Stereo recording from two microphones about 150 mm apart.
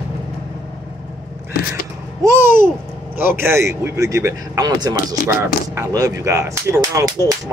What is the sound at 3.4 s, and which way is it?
Speech, 20° right (ahead or behind).